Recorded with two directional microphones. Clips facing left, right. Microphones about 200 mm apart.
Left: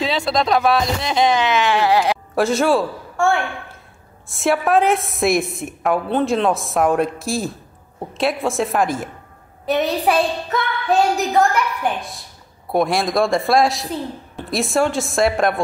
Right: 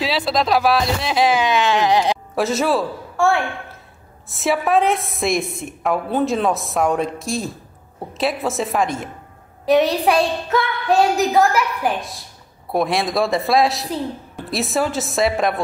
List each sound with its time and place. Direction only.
0.0 s a man's voice: centre (ahead or behind)
2.3 s a man's voice: centre (ahead or behind)